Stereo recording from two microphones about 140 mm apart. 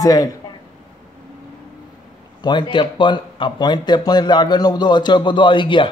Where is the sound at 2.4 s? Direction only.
35° left (ahead or behind).